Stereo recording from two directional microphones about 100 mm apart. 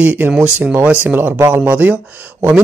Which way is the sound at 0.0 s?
15° right (ahead or behind).